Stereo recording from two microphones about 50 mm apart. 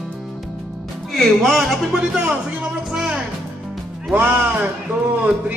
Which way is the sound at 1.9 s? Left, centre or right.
Centre.